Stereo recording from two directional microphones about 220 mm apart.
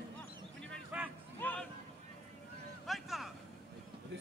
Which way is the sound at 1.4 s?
5° left (ahead or behind).